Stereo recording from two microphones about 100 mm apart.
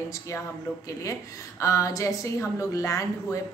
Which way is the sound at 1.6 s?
30° left (ahead or behind).